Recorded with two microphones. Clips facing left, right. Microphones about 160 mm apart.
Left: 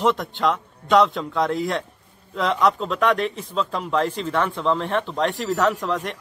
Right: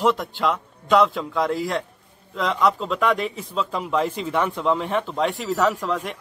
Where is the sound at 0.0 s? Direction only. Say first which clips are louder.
Even; centre (ahead or behind).